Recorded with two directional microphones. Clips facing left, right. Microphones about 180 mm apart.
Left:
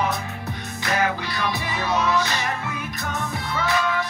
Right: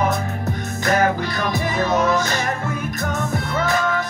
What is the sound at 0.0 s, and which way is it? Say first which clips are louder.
Music: right 5 dB; 50° right (ahead or behind).